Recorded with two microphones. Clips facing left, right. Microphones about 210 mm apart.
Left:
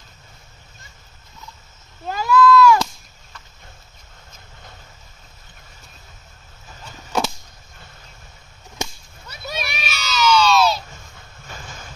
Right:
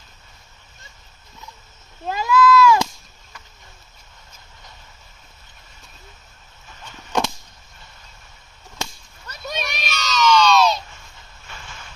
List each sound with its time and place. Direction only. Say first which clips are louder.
2.1 s a sound: left 1 dB; 20° right (ahead or behind)
9.3 s children playing: right 1 dB; 5° left (ahead or behind)
11.4 s boat: left 3 dB; 40° left (ahead or behind)